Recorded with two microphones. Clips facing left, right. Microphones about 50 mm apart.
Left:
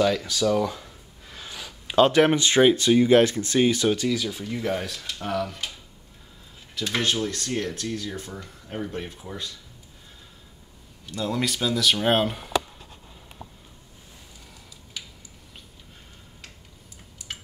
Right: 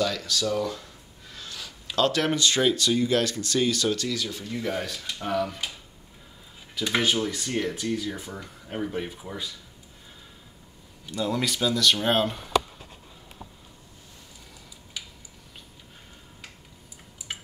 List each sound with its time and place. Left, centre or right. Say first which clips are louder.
0.0 s speech: left 5 dB; left; by 5.7 s centre
6.7 s speech: right 1 dB; centre
11.1 s speech: even; centre
15.0 s tick-tock: even; centre
17.3 s tick-tock: right 1 dB; centre